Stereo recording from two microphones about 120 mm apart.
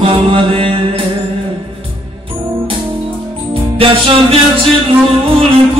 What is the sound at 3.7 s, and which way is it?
Music, 50° right (ahead or behind).